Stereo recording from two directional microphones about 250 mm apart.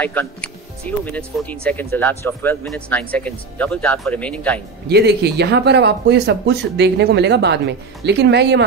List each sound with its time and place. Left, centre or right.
0.0 s speech: centre
4.8 s speech: right